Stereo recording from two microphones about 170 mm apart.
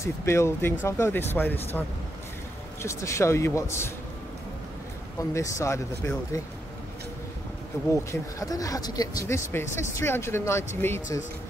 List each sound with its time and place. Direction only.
0.0 s speech: 15° left (ahead or behind)
5.3 s speech: 15° left (ahead or behind)
8.1 s speech: 20° left (ahead or behind)